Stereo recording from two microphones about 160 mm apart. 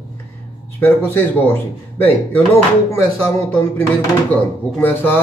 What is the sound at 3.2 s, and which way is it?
Mantra, 10° left (ahead or behind).